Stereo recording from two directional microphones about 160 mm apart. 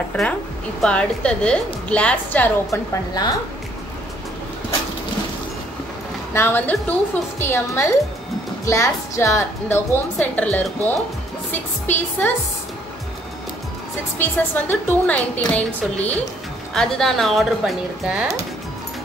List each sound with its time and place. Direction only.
0.1 s a woman's voice: 5° left (ahead or behind)
6.3 s a woman's voice: 15° left (ahead or behind)
14.1 s a woman's voice: 10° left (ahead or behind)